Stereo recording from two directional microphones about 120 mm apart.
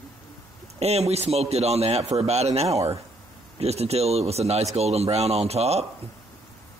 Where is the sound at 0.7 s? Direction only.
60° right (ahead or behind).